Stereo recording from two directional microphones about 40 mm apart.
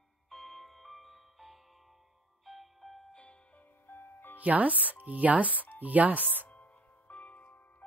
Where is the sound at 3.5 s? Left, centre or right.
Left.